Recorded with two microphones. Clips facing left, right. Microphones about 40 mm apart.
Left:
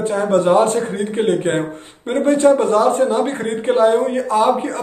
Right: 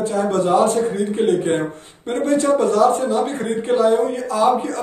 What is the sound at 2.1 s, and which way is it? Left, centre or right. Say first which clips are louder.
Speech: left 3 dB; left.